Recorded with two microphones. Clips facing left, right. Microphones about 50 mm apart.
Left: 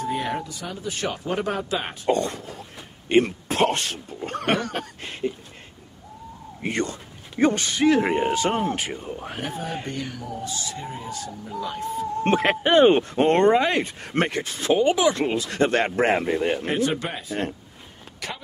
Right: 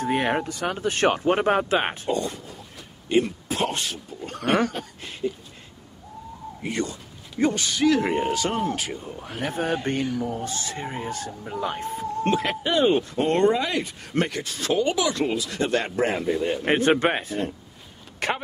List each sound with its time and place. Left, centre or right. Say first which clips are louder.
0.0 s speech: right 3 dB; right
2.0 s speech: left 3 dB; left
6.6 s speech: left 2 dB; left
9.4 s speech: right 7 dB; right
10.1 s speech: right 4 dB; right
12.3 s speech: left 5 dB; left
16.6 s speech: right 5 dB; right